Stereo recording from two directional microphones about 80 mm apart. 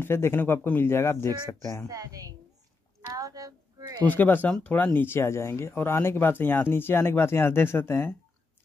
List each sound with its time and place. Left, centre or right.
0.0 s speech: left
1.9 s a woman's voice: right
3.1 s a sound: right
4.0 s speech: left